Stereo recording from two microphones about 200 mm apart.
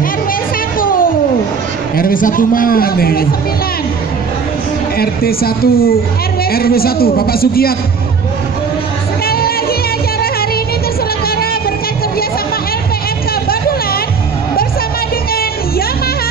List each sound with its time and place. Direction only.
0.7 s cat: 45° left (ahead or behind)
2.0 s a man's voice: 45° left (ahead or behind)
4.9 s a man's voice: 50° left (ahead or behind)
9.2 s music: 50° left (ahead or behind)